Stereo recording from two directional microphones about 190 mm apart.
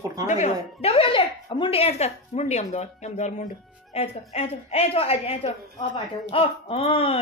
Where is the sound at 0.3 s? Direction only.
35° left (ahead or behind).